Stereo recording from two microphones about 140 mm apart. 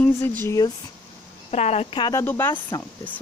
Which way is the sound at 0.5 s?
25° left (ahead or behind).